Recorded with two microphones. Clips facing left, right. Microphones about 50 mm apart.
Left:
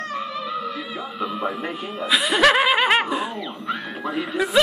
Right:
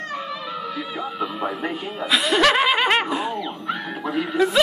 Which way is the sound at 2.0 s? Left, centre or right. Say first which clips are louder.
Left 1 dB; centre.